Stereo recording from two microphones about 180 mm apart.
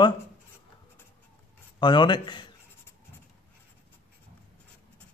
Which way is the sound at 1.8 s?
25° left (ahead or behind).